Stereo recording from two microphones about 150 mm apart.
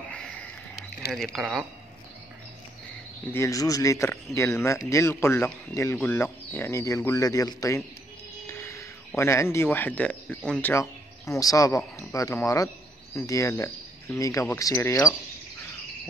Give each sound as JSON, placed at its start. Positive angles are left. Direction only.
{"t": 0.1, "sound": "sniff", "side_deg": 10}
{"t": 1.1, "sound": "speech", "side_deg": 0}
{"t": 3.3, "sound": "speech", "side_deg": 20}
{"t": 10.7, "sound": "speech", "side_deg": 20}